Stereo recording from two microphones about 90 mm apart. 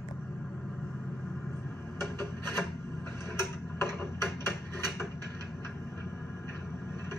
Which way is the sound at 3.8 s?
30° left (ahead or behind).